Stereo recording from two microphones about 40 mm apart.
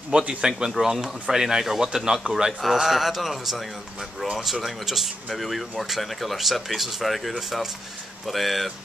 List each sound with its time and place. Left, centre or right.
0.1 s a man's voice: right
0.5 s speech: centre